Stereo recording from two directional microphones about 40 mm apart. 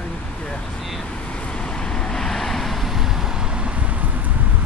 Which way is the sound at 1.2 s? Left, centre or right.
Left.